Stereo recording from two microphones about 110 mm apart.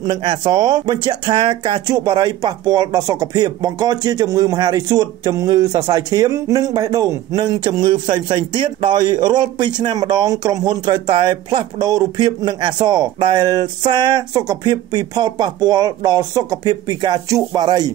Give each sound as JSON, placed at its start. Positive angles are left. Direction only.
{"t": 0.0, "sound": "speech", "side_deg": -45}